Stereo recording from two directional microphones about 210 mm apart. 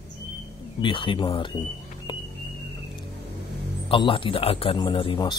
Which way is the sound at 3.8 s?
25° left (ahead or behind).